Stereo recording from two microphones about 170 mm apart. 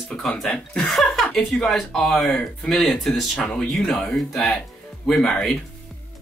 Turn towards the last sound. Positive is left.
turn(degrees=5)  # may be behind; listen again after turning